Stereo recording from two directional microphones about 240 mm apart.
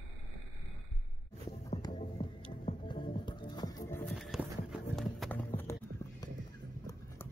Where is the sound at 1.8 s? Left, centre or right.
Left.